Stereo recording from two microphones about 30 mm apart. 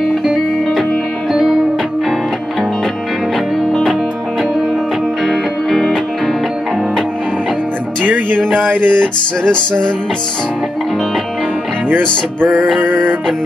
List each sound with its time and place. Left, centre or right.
1.3 s music: centre
5.2 s music: centre
8.0 s music: right
8.5 s music: right
9.5 s music: left
11.9 s music: right